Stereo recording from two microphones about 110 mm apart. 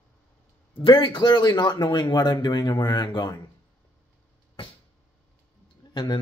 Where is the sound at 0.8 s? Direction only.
45° left (ahead or behind).